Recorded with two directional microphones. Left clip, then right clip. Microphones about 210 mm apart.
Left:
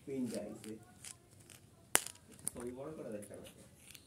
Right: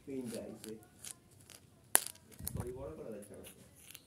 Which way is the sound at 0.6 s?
15° right (ahead or behind).